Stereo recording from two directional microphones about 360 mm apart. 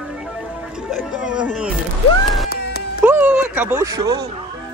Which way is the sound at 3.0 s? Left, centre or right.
Centre.